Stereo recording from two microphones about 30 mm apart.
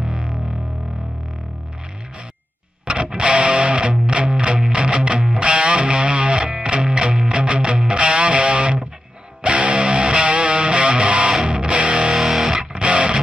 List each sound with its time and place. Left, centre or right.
0.0 s music: right
3.1 s music: right
12.2 s music: centre
12.5 s music: right